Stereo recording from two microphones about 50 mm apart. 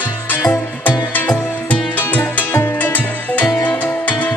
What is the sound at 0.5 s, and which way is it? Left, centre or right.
Music, left.